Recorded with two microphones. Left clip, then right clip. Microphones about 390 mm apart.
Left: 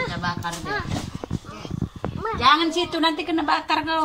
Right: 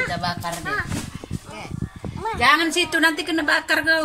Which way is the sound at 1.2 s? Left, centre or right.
Left.